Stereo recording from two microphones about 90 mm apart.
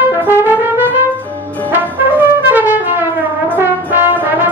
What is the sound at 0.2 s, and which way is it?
Brass instrument, 20° right (ahead or behind).